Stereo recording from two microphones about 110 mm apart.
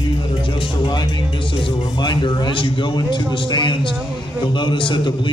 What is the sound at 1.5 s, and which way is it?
Speech, 50° left (ahead or behind).